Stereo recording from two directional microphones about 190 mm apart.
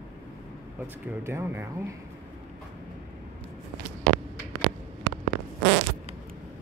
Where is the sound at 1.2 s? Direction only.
10° right (ahead or behind).